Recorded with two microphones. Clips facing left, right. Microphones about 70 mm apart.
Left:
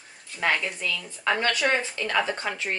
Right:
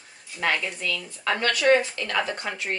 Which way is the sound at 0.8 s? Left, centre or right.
Centre.